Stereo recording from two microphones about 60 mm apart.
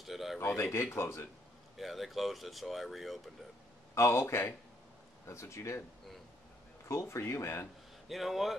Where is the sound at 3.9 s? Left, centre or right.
Left.